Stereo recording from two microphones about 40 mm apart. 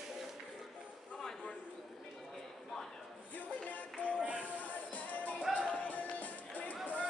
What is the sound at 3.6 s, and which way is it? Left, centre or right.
Music, left.